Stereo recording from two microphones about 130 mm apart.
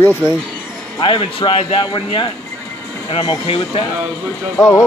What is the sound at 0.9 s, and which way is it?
Speech, 40° left (ahead or behind).